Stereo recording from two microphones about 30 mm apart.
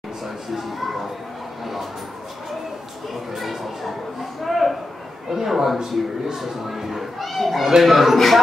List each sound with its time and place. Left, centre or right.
0.5 s speech: centre
3.3 s a sound: centre
5.3 s a man's voice: centre
5.8 s a man's voice: right
6.4 s a man's voice: centre